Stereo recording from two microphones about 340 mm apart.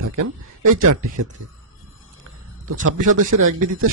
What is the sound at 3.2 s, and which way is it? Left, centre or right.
Speech, right.